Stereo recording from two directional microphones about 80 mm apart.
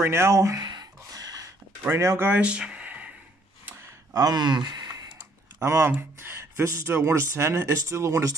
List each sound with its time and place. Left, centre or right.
0.0 s speech: right
0.6 s a sound: right
1.8 s speech: right
2.4 s a sound: centre
4.1 s speech: right
5.6 s speech: right